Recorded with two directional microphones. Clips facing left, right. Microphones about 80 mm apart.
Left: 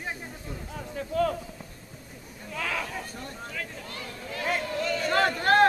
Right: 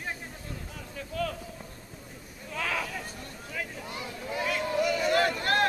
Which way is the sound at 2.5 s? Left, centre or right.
Centre.